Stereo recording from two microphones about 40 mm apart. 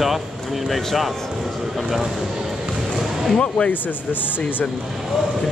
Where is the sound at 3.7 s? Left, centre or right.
Left.